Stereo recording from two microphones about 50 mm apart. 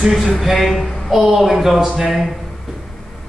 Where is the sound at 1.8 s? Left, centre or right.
Centre.